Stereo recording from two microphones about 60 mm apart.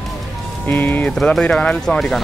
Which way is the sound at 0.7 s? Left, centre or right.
Left.